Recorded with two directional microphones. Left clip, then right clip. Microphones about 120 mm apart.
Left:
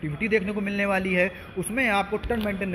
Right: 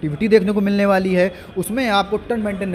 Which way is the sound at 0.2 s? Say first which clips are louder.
Right 10 dB; 30° right (ahead or behind).